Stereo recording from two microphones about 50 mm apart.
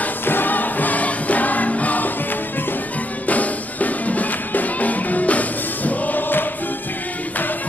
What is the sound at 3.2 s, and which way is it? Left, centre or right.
Music, left.